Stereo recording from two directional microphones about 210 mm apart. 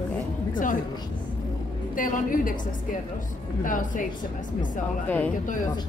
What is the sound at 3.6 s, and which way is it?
Speech, 40° left (ahead or behind).